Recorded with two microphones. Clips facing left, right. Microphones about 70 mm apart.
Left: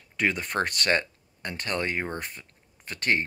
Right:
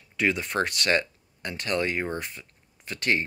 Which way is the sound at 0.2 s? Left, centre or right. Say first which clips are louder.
Right 1 dB; left.